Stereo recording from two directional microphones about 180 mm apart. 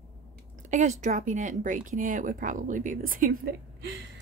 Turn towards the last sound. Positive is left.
turn(degrees=-60)  # may be behind; listen again after turning